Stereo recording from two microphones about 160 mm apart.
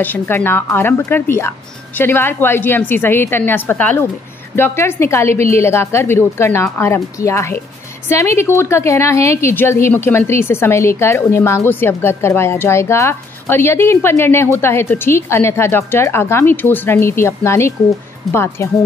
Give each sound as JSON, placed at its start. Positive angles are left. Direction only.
{"t": 0.0, "sound": "a woman's voice", "side_deg": 10}